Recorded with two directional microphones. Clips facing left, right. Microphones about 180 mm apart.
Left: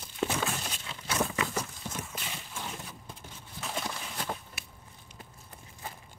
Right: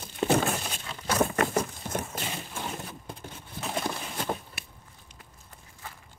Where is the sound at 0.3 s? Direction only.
50° right (ahead or behind).